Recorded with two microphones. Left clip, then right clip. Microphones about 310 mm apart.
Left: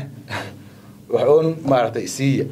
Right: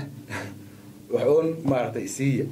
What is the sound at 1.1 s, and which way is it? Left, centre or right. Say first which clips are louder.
A man's voice: left 6 dB; left.